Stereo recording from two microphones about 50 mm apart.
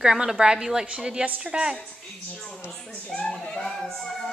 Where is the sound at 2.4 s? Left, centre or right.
Centre.